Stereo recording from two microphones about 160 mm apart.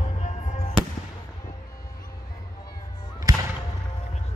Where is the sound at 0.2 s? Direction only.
45° left (ahead or behind).